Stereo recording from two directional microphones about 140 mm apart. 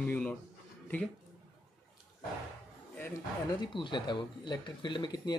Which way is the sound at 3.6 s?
35° left (ahead or behind).